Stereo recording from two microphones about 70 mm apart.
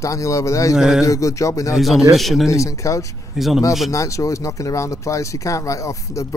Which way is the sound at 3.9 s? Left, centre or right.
Left.